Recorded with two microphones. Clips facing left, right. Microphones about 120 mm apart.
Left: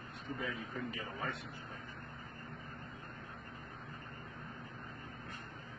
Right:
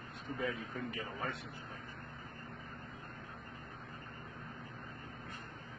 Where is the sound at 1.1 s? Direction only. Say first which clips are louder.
Even; centre (ahead or behind).